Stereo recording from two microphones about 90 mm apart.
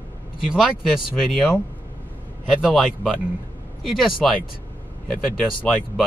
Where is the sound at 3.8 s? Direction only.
5° right (ahead or behind).